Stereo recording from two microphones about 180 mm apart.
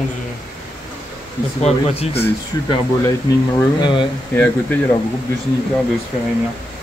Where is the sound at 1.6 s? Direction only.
35° left (ahead or behind).